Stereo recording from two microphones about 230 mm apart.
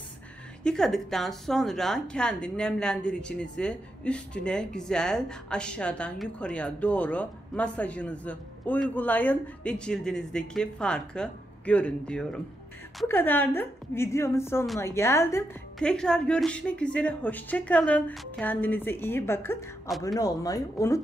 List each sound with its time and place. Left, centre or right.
0.7 s a woman's voice: centre
20.2 s a woman's voice: centre